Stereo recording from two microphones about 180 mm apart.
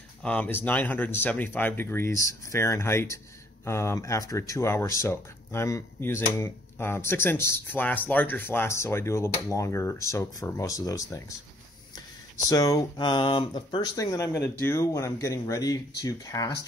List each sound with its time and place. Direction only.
0.2 s speech: 5° left (ahead or behind)
12.4 s speech: 20° left (ahead or behind)